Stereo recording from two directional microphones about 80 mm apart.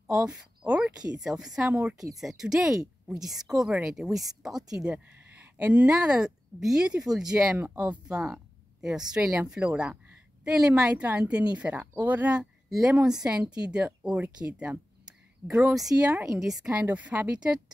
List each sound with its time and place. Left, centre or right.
0.0 s a woman's voice: centre
1.7 s speech: right
2.1 s speech: centre
4.9 s a woman's voice: right
11.7 s speech: right
12.1 s speech: centre
12.6 s a woman's voice: centre
16.7 s speech: centre